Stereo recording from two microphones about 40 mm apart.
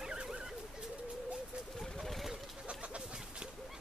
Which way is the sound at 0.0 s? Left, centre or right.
Centre.